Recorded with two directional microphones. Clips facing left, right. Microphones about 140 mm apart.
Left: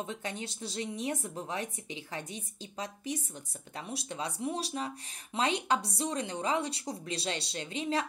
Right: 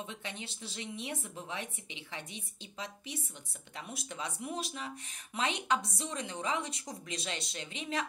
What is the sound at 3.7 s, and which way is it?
Speech, 35° left (ahead or behind).